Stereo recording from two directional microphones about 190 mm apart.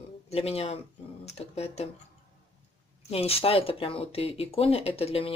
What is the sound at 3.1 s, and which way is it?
Speech, 30° left (ahead or behind).